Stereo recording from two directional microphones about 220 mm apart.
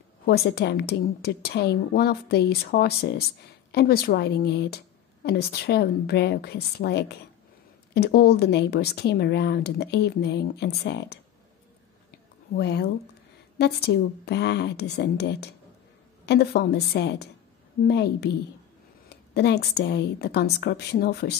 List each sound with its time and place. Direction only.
0.3 s a woman's voice: 45° left (ahead or behind)
12.5 s a woman's voice: 50° left (ahead or behind)